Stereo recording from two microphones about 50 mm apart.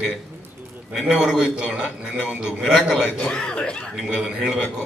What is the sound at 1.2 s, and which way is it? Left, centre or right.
Speech, centre.